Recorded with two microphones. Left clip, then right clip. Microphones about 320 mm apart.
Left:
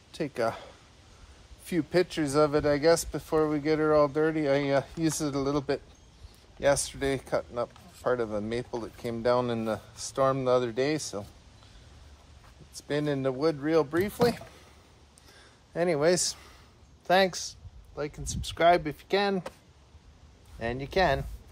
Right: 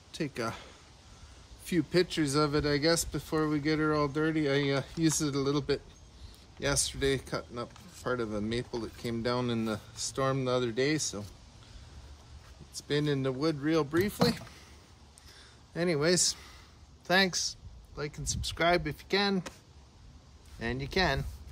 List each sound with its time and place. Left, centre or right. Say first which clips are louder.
0.1 s speech: left 6 dB; centre
12.7 s speech: left 1 dB; centre
15.3 s a sound: left 5 dB; centre
17.0 s speech: left 3 dB; centre
20.5 s speech: left 4 dB; centre